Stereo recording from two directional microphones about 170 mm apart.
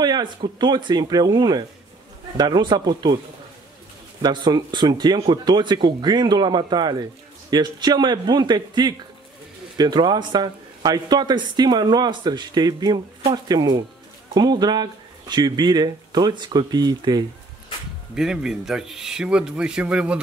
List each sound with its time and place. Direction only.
0.0 s a man's voice: 25° right (ahead or behind)
4.2 s a man's voice: 25° right (ahead or behind)
18.1 s speech: 5° right (ahead or behind)